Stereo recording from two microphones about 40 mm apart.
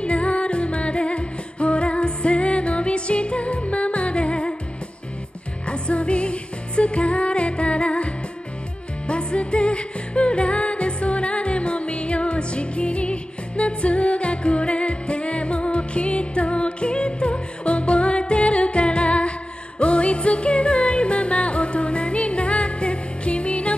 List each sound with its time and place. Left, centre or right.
0.0 s music: left
5.7 s music: left